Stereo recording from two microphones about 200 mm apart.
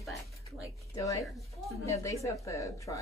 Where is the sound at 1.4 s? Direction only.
15° left (ahead or behind).